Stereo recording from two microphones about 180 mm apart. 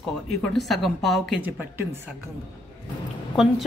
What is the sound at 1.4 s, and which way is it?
Speech, 10° right (ahead or behind).